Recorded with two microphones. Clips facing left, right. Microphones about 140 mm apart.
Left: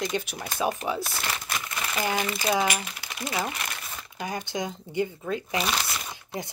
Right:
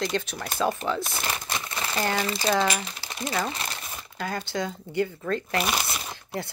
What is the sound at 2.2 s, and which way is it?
Speech, 30° right (ahead or behind).